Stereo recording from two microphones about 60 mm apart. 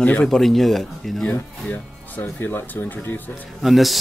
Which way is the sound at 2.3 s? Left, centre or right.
Left.